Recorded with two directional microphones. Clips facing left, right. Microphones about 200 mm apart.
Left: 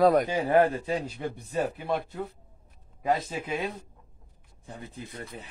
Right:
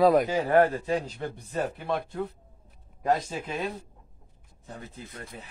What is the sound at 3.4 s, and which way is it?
Speech, 10° left (ahead or behind).